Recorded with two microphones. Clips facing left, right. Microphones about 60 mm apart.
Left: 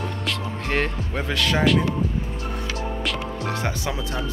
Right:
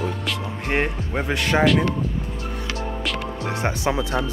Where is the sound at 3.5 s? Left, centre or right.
Right.